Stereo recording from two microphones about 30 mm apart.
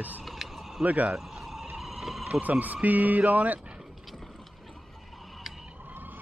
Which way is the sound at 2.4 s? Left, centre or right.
Right.